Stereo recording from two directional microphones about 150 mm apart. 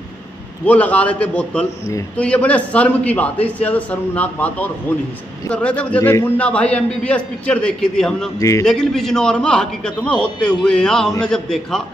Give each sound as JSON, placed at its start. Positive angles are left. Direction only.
{"t": 0.7, "sound": "a man's voice", "side_deg": 10}
{"t": 8.4, "sound": "a man's voice", "side_deg": 20}
{"t": 8.6, "sound": "a man's voice", "side_deg": 0}